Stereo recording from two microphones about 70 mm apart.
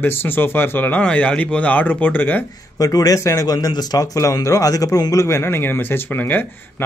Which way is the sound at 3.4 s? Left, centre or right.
Left.